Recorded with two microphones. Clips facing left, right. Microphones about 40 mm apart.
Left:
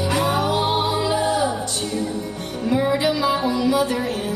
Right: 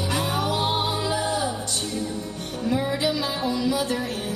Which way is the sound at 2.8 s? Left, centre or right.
Left.